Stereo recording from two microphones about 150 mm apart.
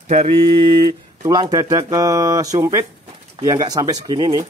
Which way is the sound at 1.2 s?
30° right (ahead or behind).